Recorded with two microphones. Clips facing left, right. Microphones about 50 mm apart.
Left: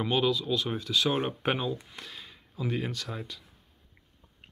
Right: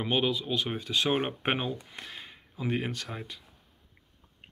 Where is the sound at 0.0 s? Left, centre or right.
Right.